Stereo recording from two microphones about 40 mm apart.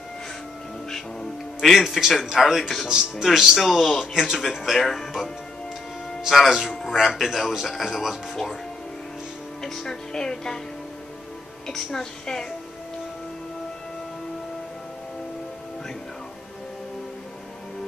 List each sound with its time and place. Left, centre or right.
0.8 s music: centre
1.7 s a man's voice: centre
9.6 s a woman's voice: centre
11.6 s a woman's voice: centre